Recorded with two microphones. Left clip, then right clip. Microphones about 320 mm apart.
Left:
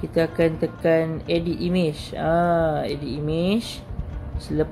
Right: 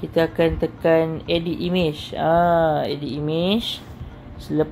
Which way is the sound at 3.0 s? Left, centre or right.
Right.